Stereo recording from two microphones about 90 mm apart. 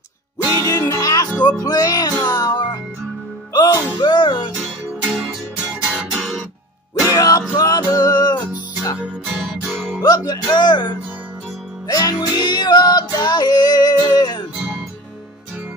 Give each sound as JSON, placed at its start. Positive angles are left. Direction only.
{"t": 0.6, "sound": "music", "side_deg": 40}
{"t": 1.6, "sound": "a child's voice", "side_deg": 40}
{"t": 3.5, "sound": "music", "side_deg": 45}
{"t": 4.0, "sound": "music", "side_deg": 55}
{"t": 5.3, "sound": "music", "side_deg": -10}
{"t": 6.1, "sound": "music", "side_deg": 5}
{"t": 7.1, "sound": "music", "side_deg": 40}
{"t": 10.0, "sound": "speech", "side_deg": 45}
{"t": 11.9, "sound": "speech", "side_deg": 45}
{"t": 12.4, "sound": "music", "side_deg": 55}